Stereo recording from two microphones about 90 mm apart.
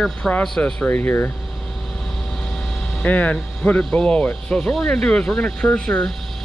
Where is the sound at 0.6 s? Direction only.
20° left (ahead or behind).